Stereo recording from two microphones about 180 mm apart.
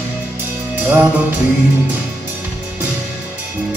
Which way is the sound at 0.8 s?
10° right (ahead or behind).